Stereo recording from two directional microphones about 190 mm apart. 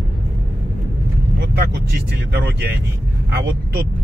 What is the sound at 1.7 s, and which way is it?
Speech, 60° right (ahead or behind).